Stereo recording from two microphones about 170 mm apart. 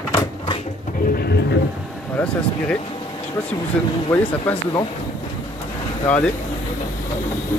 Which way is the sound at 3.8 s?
5° left (ahead or behind).